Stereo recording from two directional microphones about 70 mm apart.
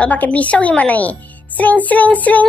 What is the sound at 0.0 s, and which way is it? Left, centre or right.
A woman's voice, left.